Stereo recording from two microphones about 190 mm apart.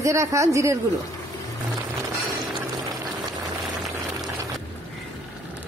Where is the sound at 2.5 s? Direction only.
20° right (ahead or behind).